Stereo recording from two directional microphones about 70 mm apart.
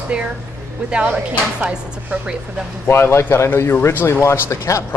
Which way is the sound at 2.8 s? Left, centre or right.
Left.